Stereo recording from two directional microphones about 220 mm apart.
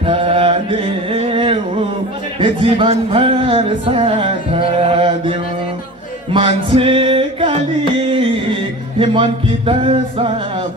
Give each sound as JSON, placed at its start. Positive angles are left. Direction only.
{"t": 0.0, "sound": "chant", "side_deg": -25}
{"t": 2.4, "sound": "speech", "side_deg": -25}
{"t": 6.3, "sound": "music", "side_deg": -25}
{"t": 9.0, "sound": "speech", "side_deg": -25}